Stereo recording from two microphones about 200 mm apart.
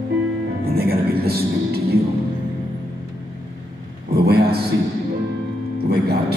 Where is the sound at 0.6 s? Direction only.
50° right (ahead or behind).